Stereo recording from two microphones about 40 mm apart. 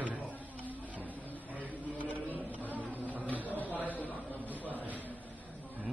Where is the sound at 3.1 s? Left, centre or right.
Right.